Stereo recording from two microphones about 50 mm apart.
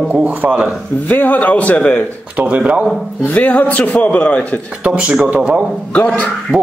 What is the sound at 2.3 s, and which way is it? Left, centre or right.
Speech, right.